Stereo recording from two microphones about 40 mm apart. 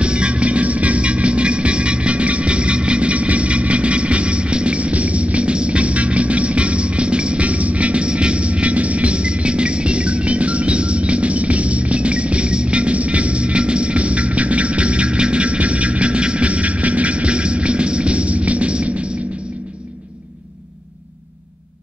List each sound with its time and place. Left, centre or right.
0.0 s music: right